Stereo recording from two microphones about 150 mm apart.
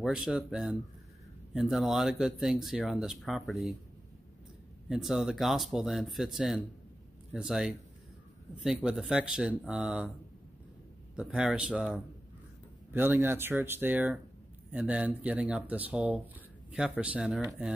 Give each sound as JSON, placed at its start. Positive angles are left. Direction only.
{"t": 0.0, "sound": "speech", "side_deg": -5}
{"t": 4.8, "sound": "speech", "side_deg": -5}
{"t": 11.1, "sound": "speech", "side_deg": -5}